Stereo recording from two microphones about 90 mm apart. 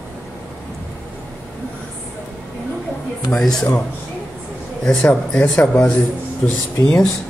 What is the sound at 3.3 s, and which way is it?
Speech, 10° left (ahead or behind).